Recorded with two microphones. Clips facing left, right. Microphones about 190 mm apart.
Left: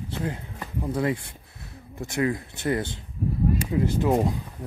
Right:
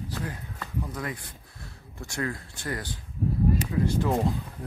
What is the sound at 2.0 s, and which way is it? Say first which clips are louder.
Speech: left 7 dB; 20° left (ahead or behind).